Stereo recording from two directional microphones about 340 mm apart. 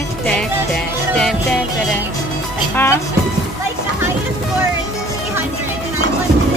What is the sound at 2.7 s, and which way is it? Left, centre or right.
Speech, centre.